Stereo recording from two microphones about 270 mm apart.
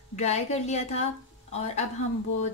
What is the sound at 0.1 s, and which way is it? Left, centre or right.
A woman's voice, left.